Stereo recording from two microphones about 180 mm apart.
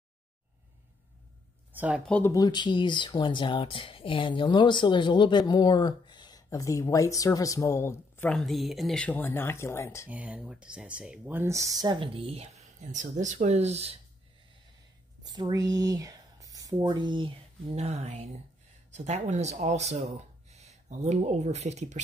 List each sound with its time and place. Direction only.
1.7 s a sound: 10° right (ahead or behind)
2.0 s speech: 10° left (ahead or behind)
2.3 s speech: 25° left (ahead or behind)
8.3 s speech: centre (ahead or behind)
10.0 s speech: 10° right (ahead or behind); by 12.4 s 30° right (ahead or behind)
12.9 s speech: 40° right (ahead or behind)
15.2 s speech: 25° right (ahead or behind); by 22.0 s 40° right (ahead or behind)